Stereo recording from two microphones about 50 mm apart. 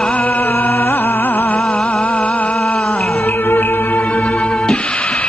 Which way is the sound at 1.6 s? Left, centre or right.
Centre.